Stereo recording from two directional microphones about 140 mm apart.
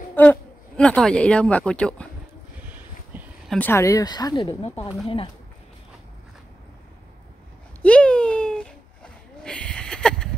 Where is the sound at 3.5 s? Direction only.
15° left (ahead or behind).